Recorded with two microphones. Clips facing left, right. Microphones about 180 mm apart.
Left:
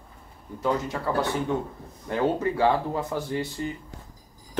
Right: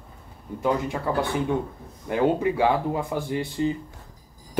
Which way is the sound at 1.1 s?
15° right (ahead or behind).